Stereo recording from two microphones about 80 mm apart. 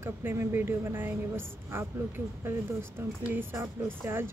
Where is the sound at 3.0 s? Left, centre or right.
Right.